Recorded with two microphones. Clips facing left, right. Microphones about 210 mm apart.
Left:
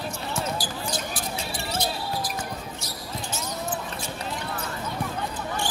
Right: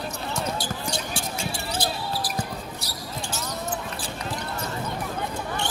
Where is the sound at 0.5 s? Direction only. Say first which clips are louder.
Right 1 dB; 25° right (ahead or behind).